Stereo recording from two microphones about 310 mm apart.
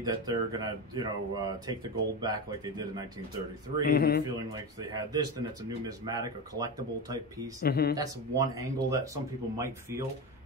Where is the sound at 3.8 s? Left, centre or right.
Left.